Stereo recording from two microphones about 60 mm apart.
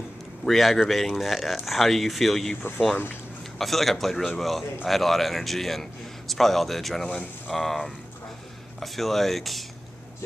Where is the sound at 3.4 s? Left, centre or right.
Centre.